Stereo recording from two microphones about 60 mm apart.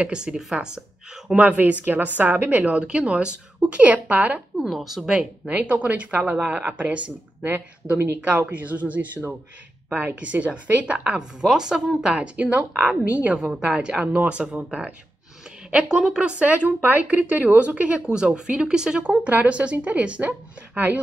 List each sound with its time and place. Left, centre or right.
0.0 s a woman's voice: centre; by 2.7 s right
2.7 s a woman's voice: centre
4.6 s speech: centre
5.5 s a woman's voice: right